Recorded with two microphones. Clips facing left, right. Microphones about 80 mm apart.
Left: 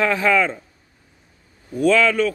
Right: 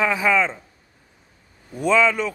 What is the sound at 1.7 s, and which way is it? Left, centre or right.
Speech, centre.